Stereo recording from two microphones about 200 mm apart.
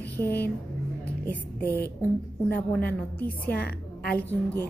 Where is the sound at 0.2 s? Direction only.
10° left (ahead or behind).